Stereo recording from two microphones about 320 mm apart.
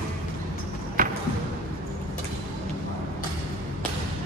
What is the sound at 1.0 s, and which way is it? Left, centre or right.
Basketball bounce, right.